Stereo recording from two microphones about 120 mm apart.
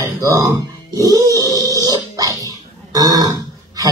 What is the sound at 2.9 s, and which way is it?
Speech, 30° right (ahead or behind).